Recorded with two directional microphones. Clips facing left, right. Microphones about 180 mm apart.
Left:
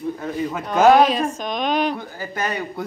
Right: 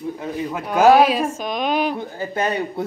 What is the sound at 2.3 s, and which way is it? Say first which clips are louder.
Speech: right 3 dB; 30° right (ahead or behind).